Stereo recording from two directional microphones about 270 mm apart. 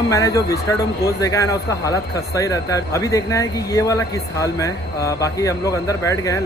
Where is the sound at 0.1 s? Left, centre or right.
Centre.